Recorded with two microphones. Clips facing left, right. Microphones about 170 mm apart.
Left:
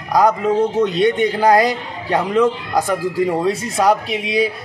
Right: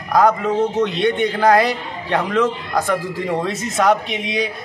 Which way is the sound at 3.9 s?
35° left (ahead or behind).